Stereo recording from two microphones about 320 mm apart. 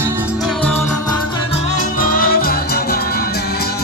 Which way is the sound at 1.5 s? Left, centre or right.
Left.